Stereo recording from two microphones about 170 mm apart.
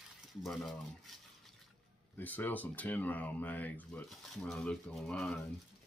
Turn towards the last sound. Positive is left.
turn(degrees=5)  # may be behind; listen again after turning